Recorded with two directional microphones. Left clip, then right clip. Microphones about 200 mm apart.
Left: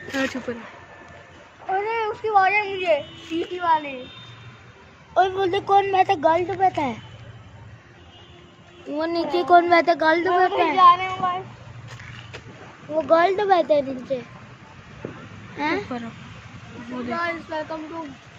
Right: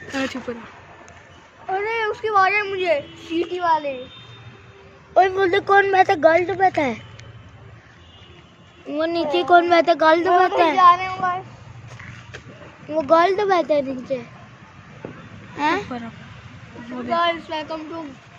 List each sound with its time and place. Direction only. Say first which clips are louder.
0.1 s speech: even; centre (ahead or behind)
1.7 s speech: right 1 dB; 60° right (ahead or behind)
5.1 s speech: right 4 dB; 60° right (ahead or behind)
8.9 s a child's voice: right 3 dB; 25° right (ahead or behind); by 11.4 s 55° right (ahead or behind)
12.9 s a child's voice: right 2 dB; 30° right (ahead or behind)
15.5 s speech: right 4 dB; 40° right (ahead or behind)
17.1 s speech: right 6 dB; 50° right (ahead or behind)